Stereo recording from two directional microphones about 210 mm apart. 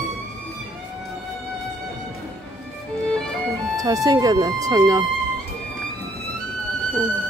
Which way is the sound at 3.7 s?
15° right (ahead or behind).